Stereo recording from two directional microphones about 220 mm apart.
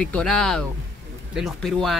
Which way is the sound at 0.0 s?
5° left (ahead or behind).